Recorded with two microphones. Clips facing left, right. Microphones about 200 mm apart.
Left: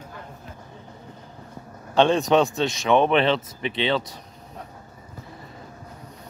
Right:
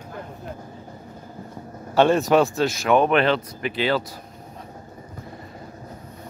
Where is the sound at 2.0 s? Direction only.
5° right (ahead or behind).